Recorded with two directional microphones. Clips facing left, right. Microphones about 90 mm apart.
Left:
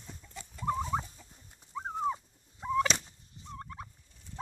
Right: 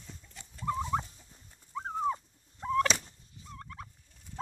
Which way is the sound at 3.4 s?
25° left (ahead or behind).